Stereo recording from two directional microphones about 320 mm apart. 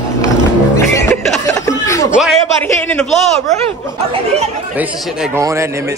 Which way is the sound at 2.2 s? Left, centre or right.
Centre.